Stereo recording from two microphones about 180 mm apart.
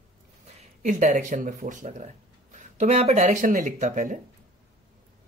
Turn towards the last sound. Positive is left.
turn(degrees=-45)  # may be behind; listen again after turning